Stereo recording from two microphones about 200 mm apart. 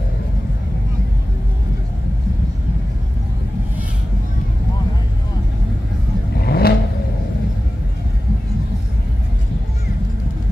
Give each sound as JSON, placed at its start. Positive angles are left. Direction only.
{"t": 6.3, "sound": "vehicle", "side_deg": 50}